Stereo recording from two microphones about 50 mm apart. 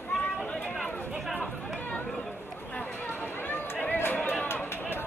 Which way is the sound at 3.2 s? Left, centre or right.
Left.